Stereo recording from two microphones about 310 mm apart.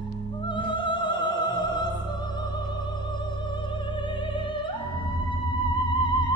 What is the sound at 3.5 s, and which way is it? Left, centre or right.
Opera, centre.